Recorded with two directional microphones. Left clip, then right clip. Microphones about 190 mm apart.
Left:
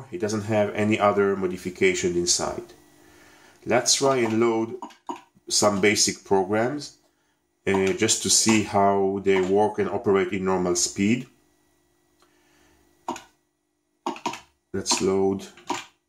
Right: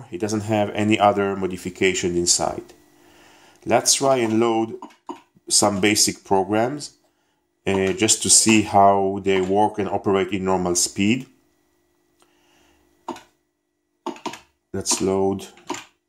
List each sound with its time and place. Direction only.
0.0 s speech: 40° right (ahead or behind)
15.0 s speech: 35° right (ahead or behind)